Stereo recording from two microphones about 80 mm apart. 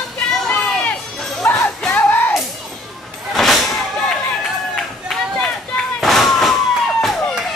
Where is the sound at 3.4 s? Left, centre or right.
Centre.